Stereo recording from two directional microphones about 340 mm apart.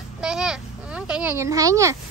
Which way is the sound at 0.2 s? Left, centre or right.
Centre.